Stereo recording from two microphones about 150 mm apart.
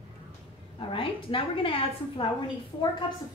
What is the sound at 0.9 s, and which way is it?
A woman's voice, 35° left (ahead or behind).